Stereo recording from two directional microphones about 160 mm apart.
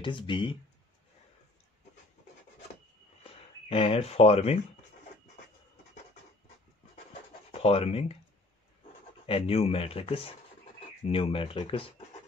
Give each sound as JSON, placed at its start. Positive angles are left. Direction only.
{"t": 0.0, "sound": "speech", "side_deg": 30}
{"t": 3.3, "sound": "speech", "side_deg": 40}
{"t": 7.5, "sound": "speech", "side_deg": 40}
{"t": 9.2, "sound": "speech", "side_deg": 40}